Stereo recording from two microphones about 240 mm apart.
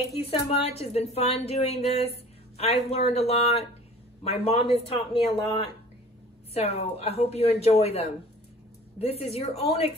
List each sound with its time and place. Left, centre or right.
0.2 s a woman's voice: left